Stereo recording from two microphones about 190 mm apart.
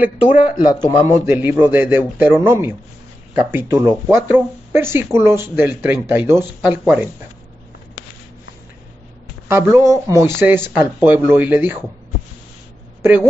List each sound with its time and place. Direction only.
0.6 s speech: 25° left (ahead or behind)
1.0 s speech: 10° right (ahead or behind)
9.5 s speech: 15° right (ahead or behind)
13.0 s a woman's voice: 15° right (ahead or behind)